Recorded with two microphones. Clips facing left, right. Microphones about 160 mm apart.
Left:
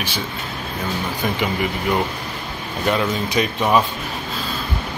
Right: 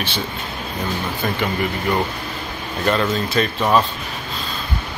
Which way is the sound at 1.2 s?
5° left (ahead or behind).